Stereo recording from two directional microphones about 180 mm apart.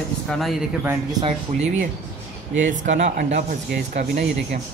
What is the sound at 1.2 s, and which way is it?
Speech, 40° right (ahead or behind).